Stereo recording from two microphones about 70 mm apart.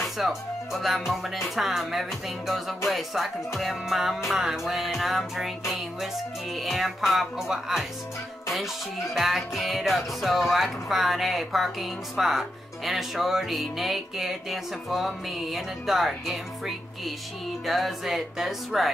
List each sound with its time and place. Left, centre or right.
0.2 s speech: centre
6.5 s speech: centre
9.1 s speech: centre